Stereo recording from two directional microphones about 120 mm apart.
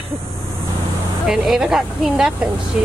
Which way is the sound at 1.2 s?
5° right (ahead or behind).